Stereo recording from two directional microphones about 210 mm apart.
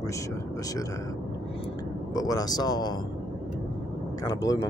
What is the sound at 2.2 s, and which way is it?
Speech, 15° left (ahead or behind).